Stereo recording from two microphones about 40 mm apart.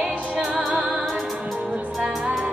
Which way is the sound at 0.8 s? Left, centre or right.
Centre.